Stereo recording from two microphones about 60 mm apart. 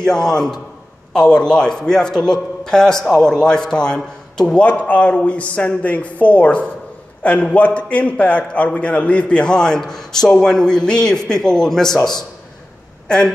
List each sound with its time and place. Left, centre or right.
0.0 s a man's voice: centre